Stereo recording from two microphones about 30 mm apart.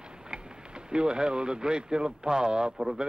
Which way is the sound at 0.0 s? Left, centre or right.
Right.